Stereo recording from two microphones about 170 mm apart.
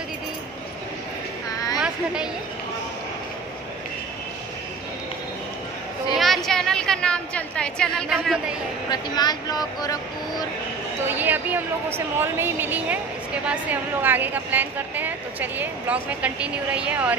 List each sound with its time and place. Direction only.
6.1 s a woman's voice: centre (ahead or behind)
8.9 s speech: 25° left (ahead or behind)
11.1 s a woman's voice: 10° right (ahead or behind)